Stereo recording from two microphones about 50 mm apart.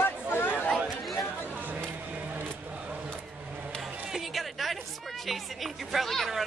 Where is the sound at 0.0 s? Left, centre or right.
Left.